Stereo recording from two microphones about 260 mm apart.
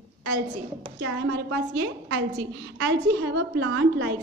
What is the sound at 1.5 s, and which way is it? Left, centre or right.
A woman's voice, right.